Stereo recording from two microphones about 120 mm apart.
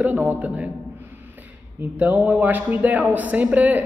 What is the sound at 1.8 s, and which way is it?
Speech, 15° right (ahead or behind).